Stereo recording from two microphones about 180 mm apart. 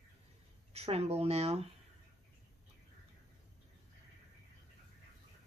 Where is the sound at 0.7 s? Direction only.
35° right (ahead or behind).